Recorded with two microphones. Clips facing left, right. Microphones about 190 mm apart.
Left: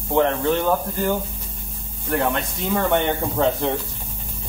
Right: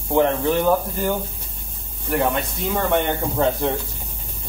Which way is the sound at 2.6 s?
Centre (ahead or behind).